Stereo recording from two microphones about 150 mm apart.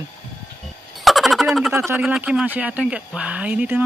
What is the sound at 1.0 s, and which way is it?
Turkey, centre (ahead or behind).